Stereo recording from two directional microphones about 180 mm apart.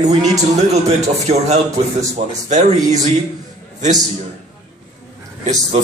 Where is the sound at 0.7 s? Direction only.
35° right (ahead or behind).